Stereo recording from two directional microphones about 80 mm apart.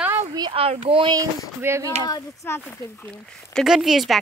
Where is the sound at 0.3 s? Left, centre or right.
Right.